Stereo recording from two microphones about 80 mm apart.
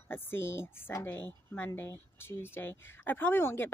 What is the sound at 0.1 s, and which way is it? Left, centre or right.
A woman's voice, left.